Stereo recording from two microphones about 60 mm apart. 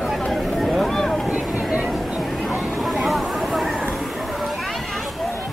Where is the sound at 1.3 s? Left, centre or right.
Right.